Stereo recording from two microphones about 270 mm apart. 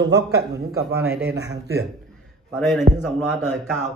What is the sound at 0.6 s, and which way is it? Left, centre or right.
Speech, right.